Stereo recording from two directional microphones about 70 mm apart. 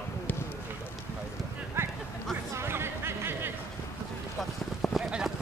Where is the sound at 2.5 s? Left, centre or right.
Right.